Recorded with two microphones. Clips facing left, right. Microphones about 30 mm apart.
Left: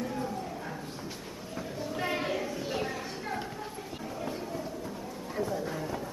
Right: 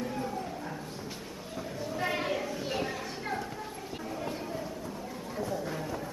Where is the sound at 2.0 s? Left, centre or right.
Centre.